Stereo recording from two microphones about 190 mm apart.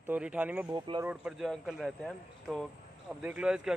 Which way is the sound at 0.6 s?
25° right (ahead or behind).